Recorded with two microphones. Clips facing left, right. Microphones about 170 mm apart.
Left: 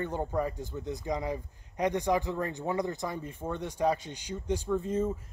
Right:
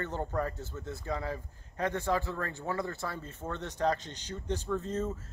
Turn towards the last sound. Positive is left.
turn(degrees=10)  # may be behind; listen again after turning